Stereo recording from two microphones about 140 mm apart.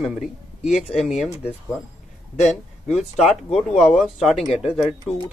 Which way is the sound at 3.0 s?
50° left (ahead or behind).